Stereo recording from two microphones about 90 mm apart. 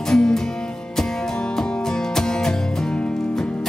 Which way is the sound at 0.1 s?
5° left (ahead or behind).